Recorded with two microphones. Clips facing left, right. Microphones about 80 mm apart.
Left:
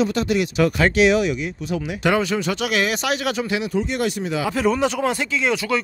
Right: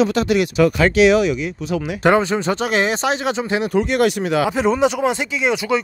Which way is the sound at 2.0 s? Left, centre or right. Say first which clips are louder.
Right 4 dB; right.